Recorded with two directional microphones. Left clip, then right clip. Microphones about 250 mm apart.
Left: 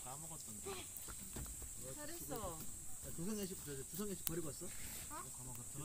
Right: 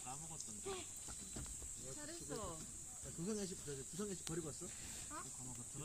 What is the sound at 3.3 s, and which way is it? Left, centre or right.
Speech, left.